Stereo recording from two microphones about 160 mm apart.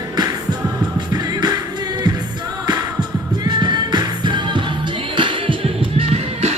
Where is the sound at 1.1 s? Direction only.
25° right (ahead or behind).